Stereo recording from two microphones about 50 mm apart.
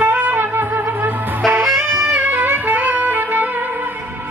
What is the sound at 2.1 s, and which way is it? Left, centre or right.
Music, right.